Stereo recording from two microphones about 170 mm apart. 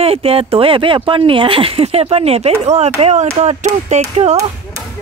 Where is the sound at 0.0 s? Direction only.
35° right (ahead or behind).